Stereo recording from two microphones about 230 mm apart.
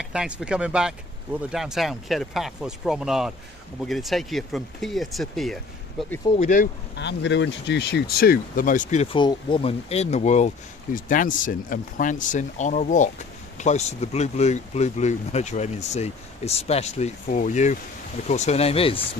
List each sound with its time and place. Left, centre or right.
0.0 s speech: centre
6.3 s speech: left